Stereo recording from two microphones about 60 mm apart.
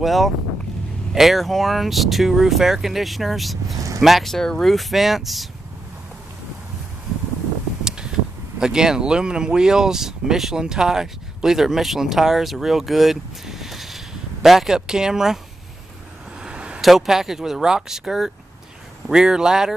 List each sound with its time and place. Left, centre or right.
0.0 s speech: centre
8.5 s speech: centre
16.3 s vehicle: centre
16.8 s speech: centre